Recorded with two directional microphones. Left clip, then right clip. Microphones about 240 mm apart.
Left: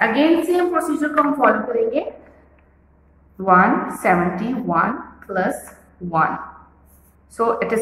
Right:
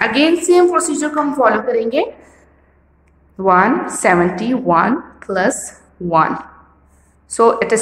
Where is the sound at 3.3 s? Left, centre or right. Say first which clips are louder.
Right 2 dB; right.